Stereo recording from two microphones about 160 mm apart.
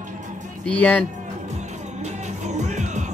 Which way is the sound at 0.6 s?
10° left (ahead or behind).